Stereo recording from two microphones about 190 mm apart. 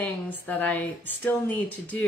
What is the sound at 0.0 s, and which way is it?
A woman's voice, 10° left (ahead or behind).